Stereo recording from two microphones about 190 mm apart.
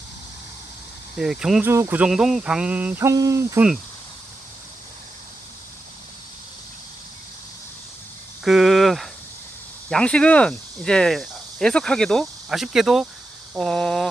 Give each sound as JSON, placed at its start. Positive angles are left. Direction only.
{"t": 1.1, "sound": "speech", "side_deg": -5}
{"t": 8.5, "sound": "a sound", "side_deg": 0}
{"t": 9.8, "sound": "speech", "side_deg": 5}